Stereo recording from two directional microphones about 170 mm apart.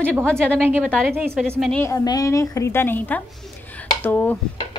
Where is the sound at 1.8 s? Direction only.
20° left (ahead or behind).